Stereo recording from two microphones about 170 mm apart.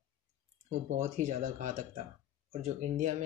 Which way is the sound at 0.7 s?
50° right (ahead or behind).